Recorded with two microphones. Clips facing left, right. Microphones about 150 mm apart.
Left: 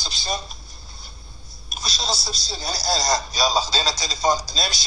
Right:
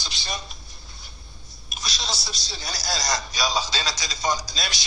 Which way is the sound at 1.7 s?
30° left (ahead or behind).